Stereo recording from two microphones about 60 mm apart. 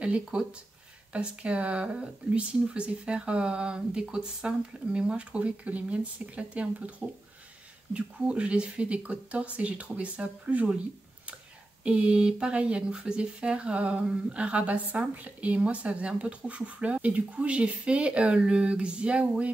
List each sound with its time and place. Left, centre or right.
0.0 s speech: centre
11.8 s speech: centre